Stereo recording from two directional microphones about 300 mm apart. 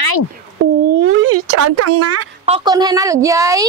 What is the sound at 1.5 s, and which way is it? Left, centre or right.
Speech, right.